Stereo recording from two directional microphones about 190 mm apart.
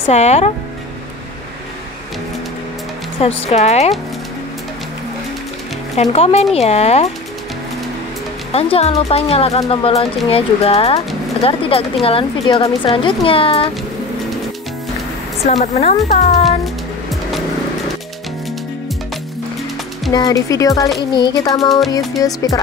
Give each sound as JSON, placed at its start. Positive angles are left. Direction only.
{"t": 0.1, "sound": "speech", "side_deg": 35}
{"t": 3.2, "sound": "speech", "side_deg": 30}
{"t": 6.1, "sound": "speech", "side_deg": 30}
{"t": 8.5, "sound": "speech", "side_deg": 30}
{"t": 15.4, "sound": "speech", "side_deg": 35}
{"t": 16.4, "sound": "music", "side_deg": 0}
{"t": 20.1, "sound": "speech", "side_deg": 20}